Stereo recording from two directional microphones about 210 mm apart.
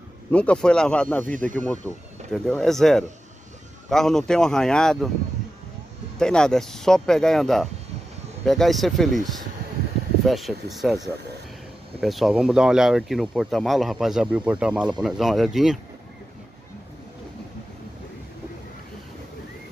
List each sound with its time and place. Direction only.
0.3 s speech: 5° left (ahead or behind)
6.1 s speech: 5° left (ahead or behind)